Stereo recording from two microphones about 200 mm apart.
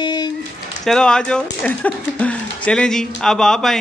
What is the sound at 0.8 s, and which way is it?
A man's voice, 5° left (ahead or behind).